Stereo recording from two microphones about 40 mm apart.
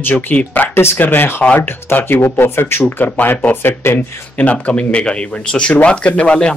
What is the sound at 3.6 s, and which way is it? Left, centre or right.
Speech, left.